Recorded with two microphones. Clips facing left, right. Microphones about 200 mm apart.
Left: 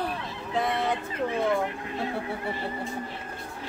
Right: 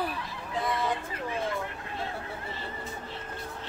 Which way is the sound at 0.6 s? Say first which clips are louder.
Left 3 dB; 65° left (ahead or behind).